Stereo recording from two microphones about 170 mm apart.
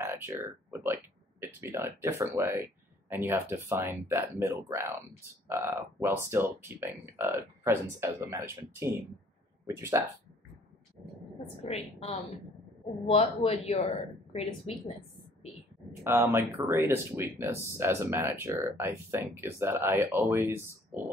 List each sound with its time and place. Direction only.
0.0 s speech: 15° right (ahead or behind)
11.7 s speech: 40° left (ahead or behind)
13.1 s speech: 35° left (ahead or behind)
16.0 s speech: 15° right (ahead or behind)